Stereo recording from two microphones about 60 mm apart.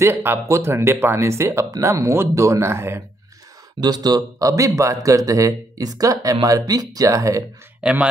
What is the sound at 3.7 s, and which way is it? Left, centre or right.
A man's voice, right.